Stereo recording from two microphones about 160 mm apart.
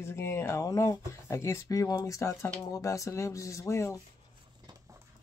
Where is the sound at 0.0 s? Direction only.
15° left (ahead or behind).